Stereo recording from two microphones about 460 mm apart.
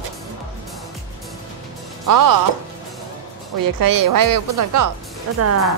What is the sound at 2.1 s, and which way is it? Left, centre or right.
Speech, right.